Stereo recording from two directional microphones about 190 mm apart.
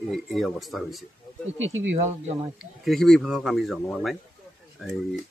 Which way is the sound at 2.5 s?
Centre (ahead or behind).